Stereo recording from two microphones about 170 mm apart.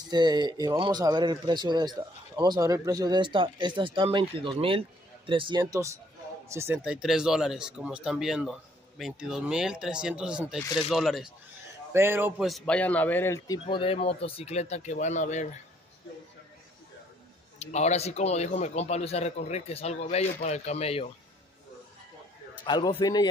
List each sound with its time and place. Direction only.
0.1 s a man's voice: 25° right (ahead or behind); by 11.3 s centre (ahead or behind)
11.9 s a man's voice: 15° right (ahead or behind)
12.4 s a man's voice: 5° left (ahead or behind)
13.7 s a man's voice: 30° left (ahead or behind)
17.6 s a man's voice: 40° left (ahead or behind)
22.7 s speech: 30° left (ahead or behind)